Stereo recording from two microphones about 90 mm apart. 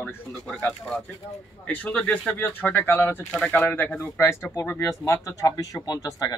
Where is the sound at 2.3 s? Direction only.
20° left (ahead or behind).